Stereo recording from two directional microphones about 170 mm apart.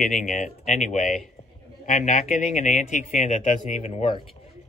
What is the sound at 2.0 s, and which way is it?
Speech, 50° left (ahead or behind).